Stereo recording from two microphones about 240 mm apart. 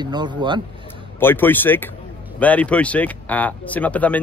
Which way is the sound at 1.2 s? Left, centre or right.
Centre.